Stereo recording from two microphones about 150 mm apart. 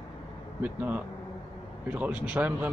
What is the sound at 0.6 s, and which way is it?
Speech, 10° right (ahead or behind).